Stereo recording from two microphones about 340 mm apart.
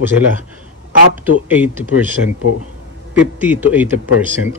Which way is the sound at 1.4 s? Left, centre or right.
Centre.